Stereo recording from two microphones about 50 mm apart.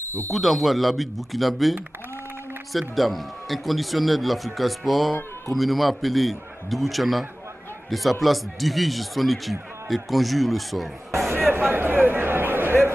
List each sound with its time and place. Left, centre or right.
0.3 s speech: centre
11.2 s speech: right